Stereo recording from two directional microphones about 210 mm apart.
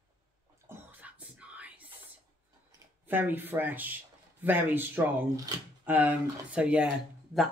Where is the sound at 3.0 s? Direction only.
10° right (ahead or behind).